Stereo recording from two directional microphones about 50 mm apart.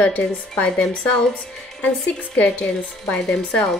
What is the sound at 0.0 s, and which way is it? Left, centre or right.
Speech, left.